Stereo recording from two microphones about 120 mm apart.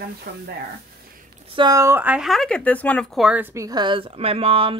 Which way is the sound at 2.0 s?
15° right (ahead or behind).